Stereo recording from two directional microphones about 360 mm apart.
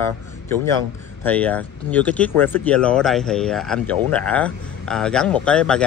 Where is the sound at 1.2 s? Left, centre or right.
Centre.